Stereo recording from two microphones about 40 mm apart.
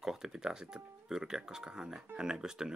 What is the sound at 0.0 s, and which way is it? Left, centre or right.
Speech, centre.